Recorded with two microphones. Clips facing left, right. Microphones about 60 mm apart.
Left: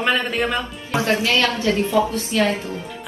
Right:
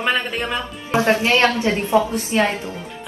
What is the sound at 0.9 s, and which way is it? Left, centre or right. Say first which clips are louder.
A woman's voice: right 3 dB; right.